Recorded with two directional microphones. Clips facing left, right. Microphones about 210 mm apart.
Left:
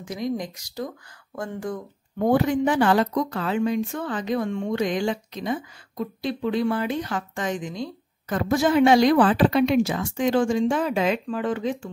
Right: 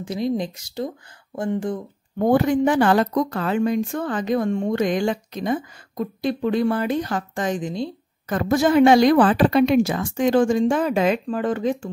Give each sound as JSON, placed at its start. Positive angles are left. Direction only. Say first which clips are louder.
{"t": 0.0, "sound": "speech", "louder": "right 4 dB", "side_deg": -30}
{"t": 2.2, "sound": "speech", "louder": "right 3 dB", "side_deg": -45}
{"t": 8.3, "sound": "speech", "louder": "right 3 dB", "side_deg": -45}